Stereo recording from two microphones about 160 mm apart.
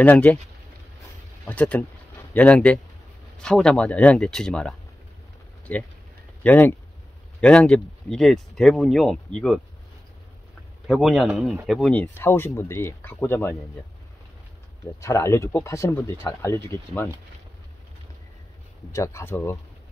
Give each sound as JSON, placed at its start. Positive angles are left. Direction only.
{"t": 0.0, "sound": "speech", "side_deg": 10}
{"t": 1.4, "sound": "speech", "side_deg": 10}
{"t": 6.4, "sound": "speech", "side_deg": 10}
{"t": 10.9, "sound": "speech", "side_deg": 0}
{"t": 15.0, "sound": "speech", "side_deg": 20}
{"t": 18.9, "sound": "speech", "side_deg": 20}